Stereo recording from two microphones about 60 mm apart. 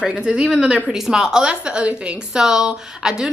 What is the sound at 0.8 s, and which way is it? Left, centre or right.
A woman's voice, centre.